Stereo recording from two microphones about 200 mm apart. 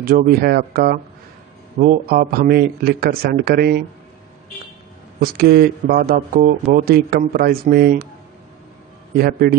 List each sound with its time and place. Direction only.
0.0 s speech: 45° right (ahead or behind)
5.2 s speech: 50° right (ahead or behind)
9.1 s speech: 50° right (ahead or behind)